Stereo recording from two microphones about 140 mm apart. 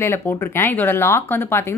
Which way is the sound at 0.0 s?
15° left (ahead or behind).